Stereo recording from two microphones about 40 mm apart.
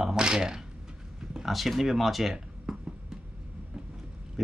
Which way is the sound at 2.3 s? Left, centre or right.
Centre.